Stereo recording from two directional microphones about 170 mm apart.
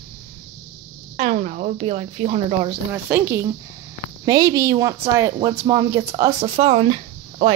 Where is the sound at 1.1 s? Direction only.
45° right (ahead or behind).